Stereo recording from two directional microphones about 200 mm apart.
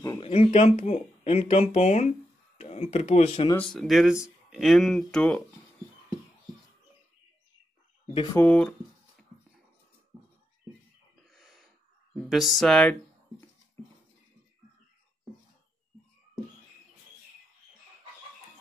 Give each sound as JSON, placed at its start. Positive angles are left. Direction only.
{"t": 0.2, "sound": "speech", "side_deg": 30}
{"t": 3.5, "sound": "speech", "side_deg": 0}
{"t": 8.1, "sound": "speech", "side_deg": 30}
{"t": 8.4, "sound": "speech", "side_deg": 5}
{"t": 11.2, "sound": "snort", "side_deg": 0}
{"t": 12.3, "sound": "speech", "side_deg": 0}